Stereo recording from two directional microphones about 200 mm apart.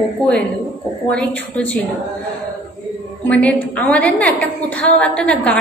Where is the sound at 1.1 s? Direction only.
5° left (ahead or behind).